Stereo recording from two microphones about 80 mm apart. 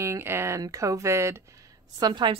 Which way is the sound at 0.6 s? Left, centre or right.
Right.